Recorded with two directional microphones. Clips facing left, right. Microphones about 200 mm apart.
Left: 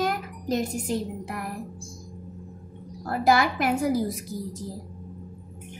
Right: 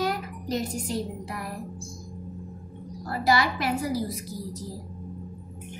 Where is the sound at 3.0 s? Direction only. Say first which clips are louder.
Left 3 dB; 50° left (ahead or behind).